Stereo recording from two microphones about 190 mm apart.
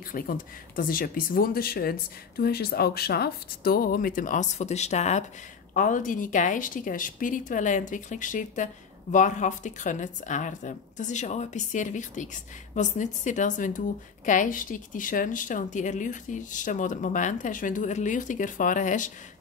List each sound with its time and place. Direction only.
0.1 s a woman's voice: 45° left (ahead or behind)